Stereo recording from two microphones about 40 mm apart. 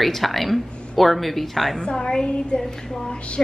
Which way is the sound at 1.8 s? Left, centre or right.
Left.